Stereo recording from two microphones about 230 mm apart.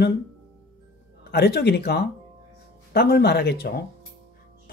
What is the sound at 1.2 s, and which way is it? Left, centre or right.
Speech, left.